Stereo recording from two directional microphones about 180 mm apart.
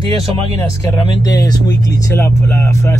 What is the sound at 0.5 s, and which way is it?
Speech, 20° left (ahead or behind).